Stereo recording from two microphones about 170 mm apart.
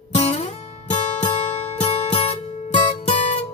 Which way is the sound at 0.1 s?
40° left (ahead or behind).